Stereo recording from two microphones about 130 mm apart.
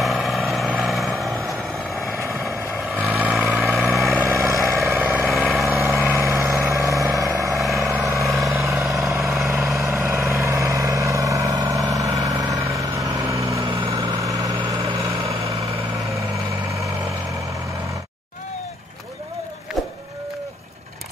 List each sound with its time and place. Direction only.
0.0 s vehicle: centre (ahead or behind)
2.4 s vehicle: 10° right (ahead or behind)
3.3 s vehicle: centre (ahead or behind)
4.1 s vehicle: 20° right (ahead or behind)
5.2 s vehicle: 5° left (ahead or behind)
5.7 s vehicle: 20° right (ahead or behind)
7.5 s vehicle: centre (ahead or behind)
8.5 s vehicle: 20° right (ahead or behind)
9.4 s vehicle: centre (ahead or behind)
9.8 s vehicle: 20° right (ahead or behind)